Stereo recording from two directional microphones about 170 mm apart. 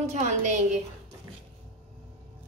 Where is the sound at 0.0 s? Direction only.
40° right (ahead or behind).